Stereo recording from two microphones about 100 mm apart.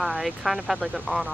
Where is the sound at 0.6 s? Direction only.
15° right (ahead or behind).